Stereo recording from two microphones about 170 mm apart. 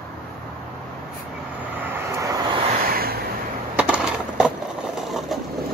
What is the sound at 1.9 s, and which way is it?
Vehicle, 20° right (ahead or behind).